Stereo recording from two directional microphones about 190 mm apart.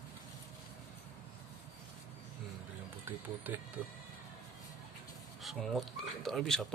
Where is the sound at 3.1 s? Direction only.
10° right (ahead or behind).